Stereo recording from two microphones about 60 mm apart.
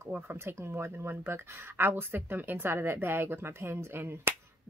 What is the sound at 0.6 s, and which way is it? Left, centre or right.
A woman's voice, right.